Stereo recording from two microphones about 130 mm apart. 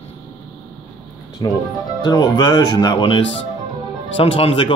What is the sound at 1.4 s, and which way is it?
Speech, 30° left (ahead or behind).